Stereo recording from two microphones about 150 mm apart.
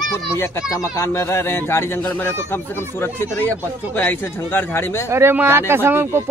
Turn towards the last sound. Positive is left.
turn(degrees=-15)  # may be behind; listen again after turning